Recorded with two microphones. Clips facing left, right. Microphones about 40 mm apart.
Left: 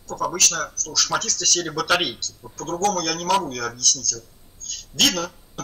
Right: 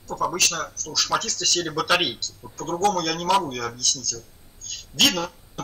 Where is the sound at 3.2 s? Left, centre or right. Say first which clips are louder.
Even; centre.